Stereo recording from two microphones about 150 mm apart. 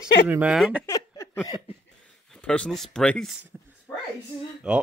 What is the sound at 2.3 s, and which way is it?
Speech, 5° left (ahead or behind).